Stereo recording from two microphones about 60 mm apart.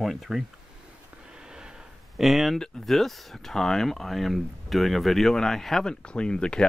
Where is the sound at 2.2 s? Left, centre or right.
Centre.